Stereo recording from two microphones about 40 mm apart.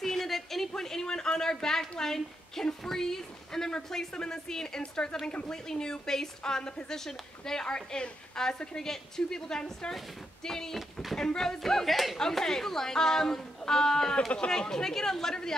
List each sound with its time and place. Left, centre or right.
0.0 s a woman's voice: centre
10.8 s speech: centre
11.1 s a woman's voice: centre
12.2 s a woman's voice: centre